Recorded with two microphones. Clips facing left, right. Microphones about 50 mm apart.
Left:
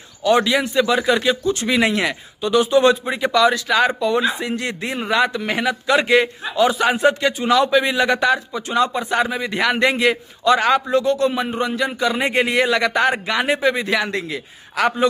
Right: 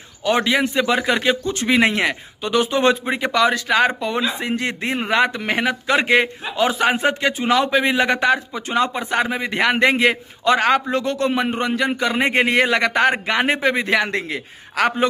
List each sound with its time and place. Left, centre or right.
0.2 s a man's voice: right